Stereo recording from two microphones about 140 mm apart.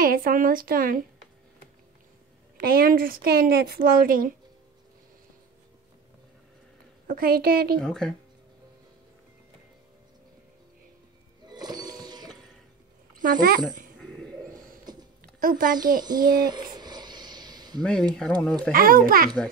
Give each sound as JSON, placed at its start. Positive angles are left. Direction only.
{"t": 0.0, "sound": "speech", "side_deg": -90}
{"t": 2.5, "sound": "speech", "side_deg": -90}
{"t": 7.1, "sound": "speech", "side_deg": -90}
{"t": 7.8, "sound": "speech", "side_deg": 5}
{"t": 11.4, "sound": "a sound", "side_deg": -30}
{"t": 13.2, "sound": "speech", "side_deg": -80}
{"t": 14.5, "sound": "a sound", "side_deg": -90}
{"t": 15.4, "sound": "speech", "side_deg": -85}
{"t": 16.0, "sound": "speech", "side_deg": -30}
{"t": 16.7, "sound": "a sound", "side_deg": -30}
{"t": 18.4, "sound": "a child's voice", "side_deg": 5}
{"t": 18.7, "sound": "speech", "side_deg": -90}